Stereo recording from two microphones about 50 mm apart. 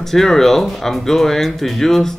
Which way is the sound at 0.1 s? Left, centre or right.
Centre.